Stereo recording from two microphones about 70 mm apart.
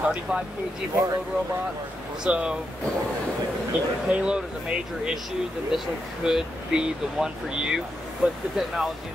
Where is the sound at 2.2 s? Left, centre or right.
Centre.